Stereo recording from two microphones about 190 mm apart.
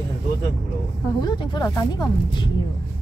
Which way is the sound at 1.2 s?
25° left (ahead or behind).